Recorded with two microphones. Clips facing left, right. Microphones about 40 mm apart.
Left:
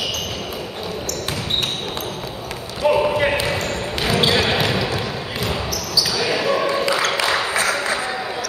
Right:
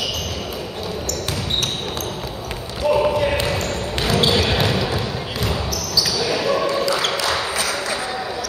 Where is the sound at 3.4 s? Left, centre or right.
Centre.